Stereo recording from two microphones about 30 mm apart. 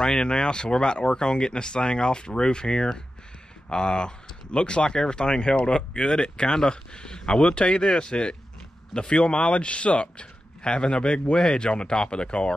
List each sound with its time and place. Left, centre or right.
0.0 s speech: left